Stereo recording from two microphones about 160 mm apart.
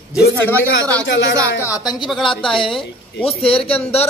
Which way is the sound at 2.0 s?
Centre (ahead or behind).